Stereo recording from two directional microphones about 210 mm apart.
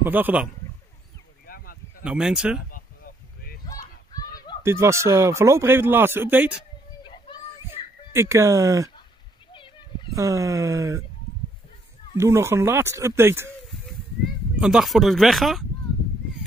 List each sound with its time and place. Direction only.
0.0 s speech: 10° right (ahead or behind)
1.4 s a sound: 45° left (ahead or behind)
2.0 s speech: 5° right (ahead or behind)
2.7 s a sound: 40° left (ahead or behind)
3.6 s a sound: 15° left (ahead or behind)
4.6 s speech: 15° right (ahead or behind)
7.0 s children playing: 20° left (ahead or behind)
8.1 s speech: 15° right (ahead or behind)
10.1 s speech: 15° right (ahead or behind)
12.2 s speech: 10° right (ahead or behind)
14.6 s speech: 5° right (ahead or behind)